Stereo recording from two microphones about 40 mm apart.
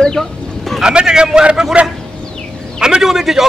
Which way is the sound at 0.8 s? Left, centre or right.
Centre.